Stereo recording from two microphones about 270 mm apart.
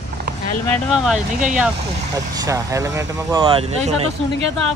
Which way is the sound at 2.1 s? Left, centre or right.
Centre.